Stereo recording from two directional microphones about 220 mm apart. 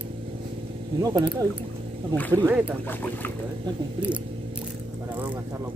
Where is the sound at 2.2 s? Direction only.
10° left (ahead or behind).